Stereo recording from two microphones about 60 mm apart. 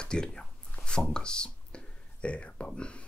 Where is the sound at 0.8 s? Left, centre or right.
Centre.